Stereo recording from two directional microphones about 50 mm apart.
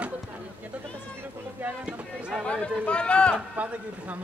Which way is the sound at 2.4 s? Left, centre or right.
Left.